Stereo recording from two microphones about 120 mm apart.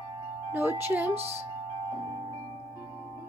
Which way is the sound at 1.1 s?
60° right (ahead or behind).